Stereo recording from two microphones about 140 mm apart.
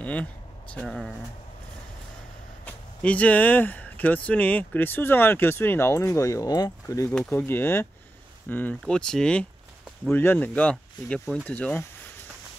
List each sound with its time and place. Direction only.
0.0 s speech: 10° left (ahead or behind)
2.6 s speech: 10° left (ahead or behind); by 7.1 s 25° left (ahead or behind)
7.1 s speech: 10° left (ahead or behind)